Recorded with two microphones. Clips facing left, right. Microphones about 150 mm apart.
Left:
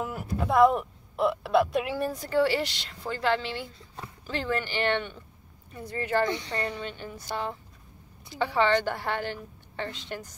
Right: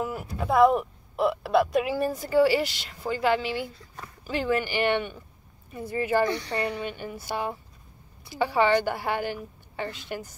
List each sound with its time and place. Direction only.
0.0 s a sound: centre (ahead or behind)
0.4 s a woman's voice: centre (ahead or behind)
6.2 s speech: 20° left (ahead or behind)
6.5 s a woman's voice: 15° right (ahead or behind)